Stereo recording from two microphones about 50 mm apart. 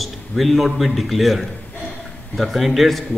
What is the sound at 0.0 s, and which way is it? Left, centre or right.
A man's voice, centre.